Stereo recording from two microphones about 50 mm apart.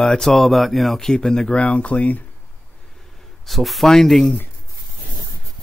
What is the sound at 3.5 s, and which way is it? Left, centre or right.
Speech, centre.